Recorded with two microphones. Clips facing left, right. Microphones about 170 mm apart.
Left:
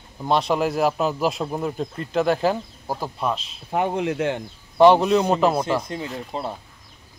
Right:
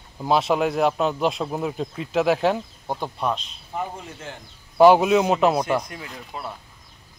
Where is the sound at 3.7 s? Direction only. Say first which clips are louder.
Left 9 dB; 80° left.